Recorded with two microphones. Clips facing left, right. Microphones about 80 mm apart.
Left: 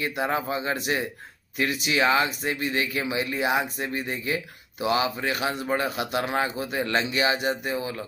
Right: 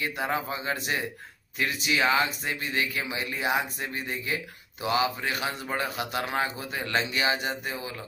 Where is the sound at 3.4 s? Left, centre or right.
Left.